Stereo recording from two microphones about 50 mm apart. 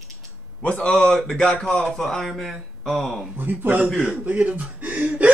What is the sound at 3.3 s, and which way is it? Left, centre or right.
Speech, right.